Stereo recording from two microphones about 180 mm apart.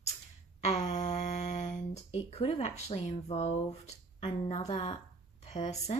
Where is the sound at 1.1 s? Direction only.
40° left (ahead or behind).